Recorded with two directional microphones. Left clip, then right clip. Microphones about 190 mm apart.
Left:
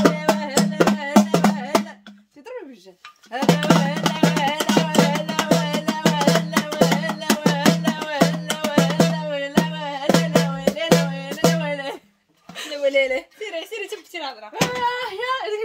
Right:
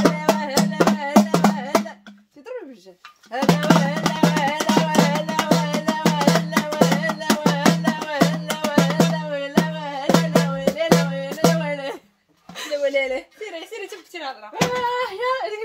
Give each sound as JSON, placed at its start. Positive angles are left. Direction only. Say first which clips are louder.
{"t": 0.1, "sound": "music", "louder": "even", "side_deg": -5}
{"t": 3.3, "sound": "speech", "louder": "right 1 dB", "side_deg": -5}
{"t": 3.8, "sound": "music", "louder": "even", "side_deg": 5}
{"t": 10.0, "sound": "music", "louder": "even", "side_deg": 25}
{"t": 10.4, "sound": "music", "louder": "right 1 dB", "side_deg": 0}
{"t": 12.8, "sound": "a sound", "louder": "left 3 dB", "side_deg": 30}
{"t": 14.5, "sound": "a sound", "louder": "even", "side_deg": 0}